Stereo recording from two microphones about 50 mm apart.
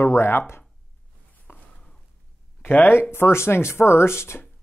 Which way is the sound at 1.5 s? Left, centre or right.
Left.